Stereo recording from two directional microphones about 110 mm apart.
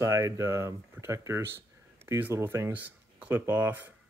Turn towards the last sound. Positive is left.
turn(degrees=-15)  # may be behind; listen again after turning